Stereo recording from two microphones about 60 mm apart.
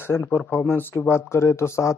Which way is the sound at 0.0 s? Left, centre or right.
Left.